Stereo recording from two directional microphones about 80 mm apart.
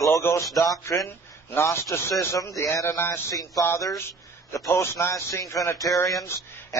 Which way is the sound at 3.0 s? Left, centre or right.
Left.